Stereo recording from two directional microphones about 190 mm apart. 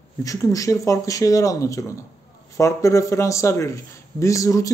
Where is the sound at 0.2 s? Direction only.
15° left (ahead or behind).